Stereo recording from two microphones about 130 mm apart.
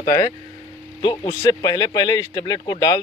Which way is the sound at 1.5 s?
30° left (ahead or behind).